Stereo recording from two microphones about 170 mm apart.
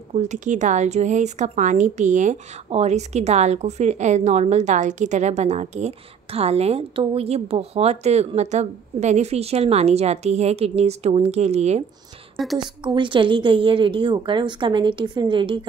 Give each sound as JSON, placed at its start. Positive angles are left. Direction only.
{"t": 0.1, "sound": "a woman's voice", "side_deg": -45}
{"t": 12.4, "sound": "a woman's voice", "side_deg": 0}
{"t": 12.8, "sound": "a woman's voice", "side_deg": -30}